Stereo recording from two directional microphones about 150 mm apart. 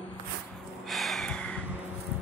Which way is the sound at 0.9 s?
Centre (ahead or behind).